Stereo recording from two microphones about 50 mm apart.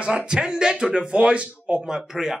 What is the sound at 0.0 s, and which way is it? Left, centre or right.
Speech, centre.